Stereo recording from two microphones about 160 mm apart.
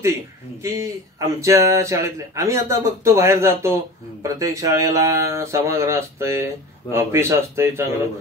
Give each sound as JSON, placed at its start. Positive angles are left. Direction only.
{"t": 0.7, "sound": "speech", "side_deg": -20}